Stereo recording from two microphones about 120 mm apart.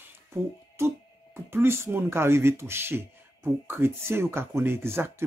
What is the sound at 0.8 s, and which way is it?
Music, 20° right (ahead or behind).